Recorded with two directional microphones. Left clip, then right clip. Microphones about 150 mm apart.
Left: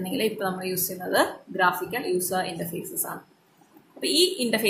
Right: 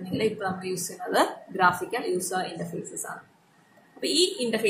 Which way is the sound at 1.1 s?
10° left (ahead or behind).